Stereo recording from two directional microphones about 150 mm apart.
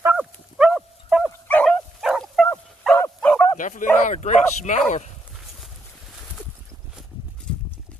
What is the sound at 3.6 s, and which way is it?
Bow-wow, 60° left (ahead or behind).